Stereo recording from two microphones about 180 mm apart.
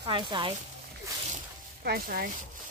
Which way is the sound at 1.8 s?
55° right (ahead or behind).